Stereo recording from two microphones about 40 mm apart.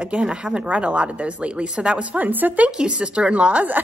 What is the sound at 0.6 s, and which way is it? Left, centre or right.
Speech, right.